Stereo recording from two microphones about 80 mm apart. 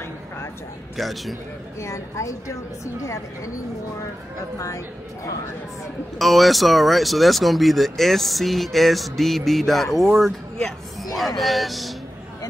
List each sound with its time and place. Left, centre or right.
0.9 s speech: centre
1.8 s a woman's voice: left
6.1 s speech: centre